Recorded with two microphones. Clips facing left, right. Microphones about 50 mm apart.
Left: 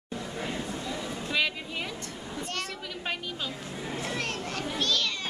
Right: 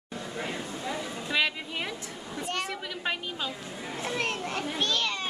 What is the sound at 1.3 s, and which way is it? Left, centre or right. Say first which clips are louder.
Vehicle: right 1 dB; centre.